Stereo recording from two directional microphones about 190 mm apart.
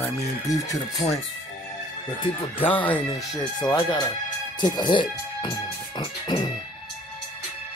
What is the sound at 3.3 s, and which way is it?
Speech, 20° left (ahead or behind).